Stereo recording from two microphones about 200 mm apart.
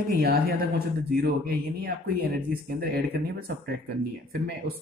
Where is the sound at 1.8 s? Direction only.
50° right (ahead or behind).